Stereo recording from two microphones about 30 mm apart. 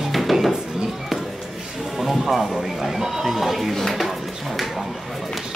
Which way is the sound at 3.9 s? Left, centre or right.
Centre.